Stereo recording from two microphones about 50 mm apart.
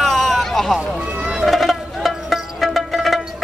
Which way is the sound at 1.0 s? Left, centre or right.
Right.